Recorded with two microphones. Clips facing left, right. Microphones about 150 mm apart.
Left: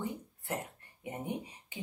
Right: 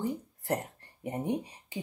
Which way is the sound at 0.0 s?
40° right (ahead or behind).